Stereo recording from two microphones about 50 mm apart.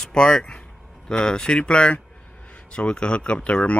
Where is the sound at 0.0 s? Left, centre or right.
Centre.